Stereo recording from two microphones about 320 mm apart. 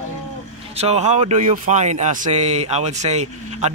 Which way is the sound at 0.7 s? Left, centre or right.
Centre.